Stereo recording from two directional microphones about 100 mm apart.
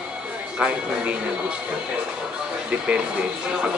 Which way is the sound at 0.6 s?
10° right (ahead or behind).